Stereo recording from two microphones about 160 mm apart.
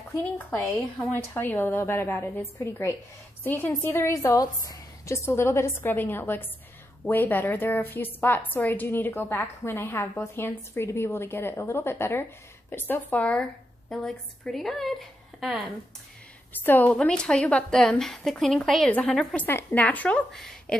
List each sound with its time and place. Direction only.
0.5 s a woman's voice: 10° left (ahead or behind)
16.5 s a woman's voice: 10° left (ahead or behind)